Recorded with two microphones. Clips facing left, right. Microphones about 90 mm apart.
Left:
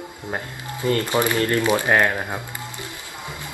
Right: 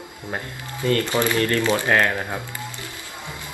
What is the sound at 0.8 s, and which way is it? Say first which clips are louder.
Speech: even; 20° left (ahead or behind).